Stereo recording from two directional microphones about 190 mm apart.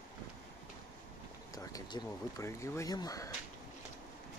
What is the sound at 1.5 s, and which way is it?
Speech, 20° left (ahead or behind).